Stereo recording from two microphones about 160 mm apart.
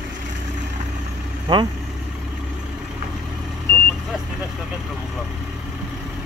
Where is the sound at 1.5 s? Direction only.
25° right (ahead or behind).